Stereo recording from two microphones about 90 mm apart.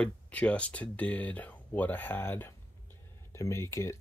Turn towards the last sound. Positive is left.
turn(degrees=35)  # may be behind; listen again after turning